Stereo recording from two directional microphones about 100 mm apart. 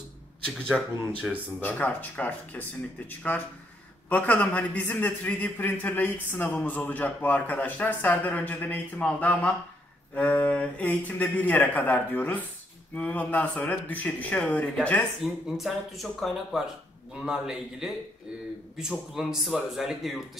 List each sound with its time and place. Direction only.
0.7 s a man's voice: 5° left (ahead or behind)
15.2 s a man's voice: 5° right (ahead or behind)